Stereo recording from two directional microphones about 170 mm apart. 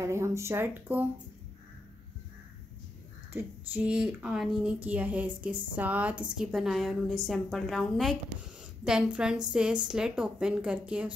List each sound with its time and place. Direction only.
0.0 s speech: 15° right (ahead or behind)
3.3 s speech: 10° right (ahead or behind)